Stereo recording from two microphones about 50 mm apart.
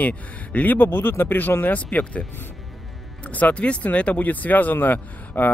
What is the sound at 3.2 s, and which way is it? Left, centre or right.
Speech, left.